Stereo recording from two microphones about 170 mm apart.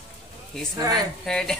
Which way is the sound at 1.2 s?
5° left (ahead or behind).